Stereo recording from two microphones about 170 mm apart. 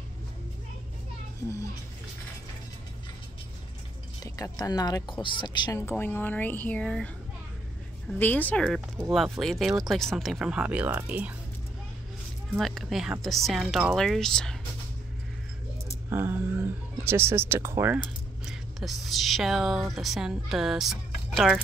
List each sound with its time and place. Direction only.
4.2 s speech: 20° left (ahead or behind); by 7.1 s 5° left (ahead or behind)
8.1 s speech: 10° left (ahead or behind); by 11.3 s 10° right (ahead or behind)
12.5 s speech: centre (ahead or behind)
16.1 s speech: 15° right (ahead or behind)
18.4 s speech: centre (ahead or behind)